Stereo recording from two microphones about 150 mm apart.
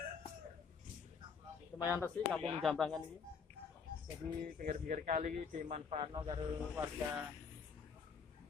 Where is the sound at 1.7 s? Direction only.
20° left (ahead or behind).